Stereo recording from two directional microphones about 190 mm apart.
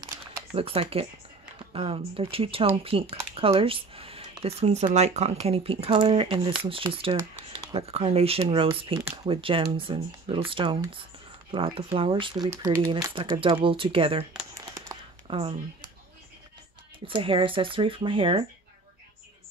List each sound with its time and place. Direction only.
0.0 s a sound: 25° right (ahead or behind)
1.7 s speech: 30° right (ahead or behind)
15.2 s speech: 30° right (ahead or behind)
17.0 s speech: 25° right (ahead or behind)